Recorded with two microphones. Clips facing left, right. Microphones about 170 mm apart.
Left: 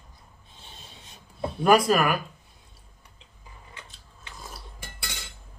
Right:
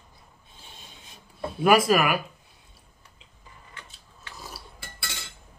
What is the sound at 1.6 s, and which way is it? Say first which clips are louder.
Speech: even; 10° right (ahead or behind).